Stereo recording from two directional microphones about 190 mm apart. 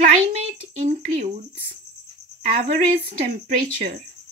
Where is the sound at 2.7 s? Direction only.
35° right (ahead or behind).